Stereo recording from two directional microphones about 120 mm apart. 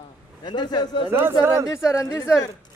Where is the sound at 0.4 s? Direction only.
35° left (ahead or behind).